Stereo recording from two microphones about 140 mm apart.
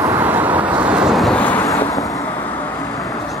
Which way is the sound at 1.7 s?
25° left (ahead or behind).